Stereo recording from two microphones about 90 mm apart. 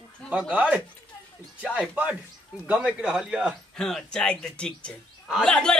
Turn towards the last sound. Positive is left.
turn(degrees=10)  # may be behind; listen again after turning